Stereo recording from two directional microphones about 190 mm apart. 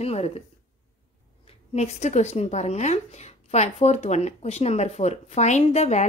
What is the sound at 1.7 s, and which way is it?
Speech, 35° left (ahead or behind).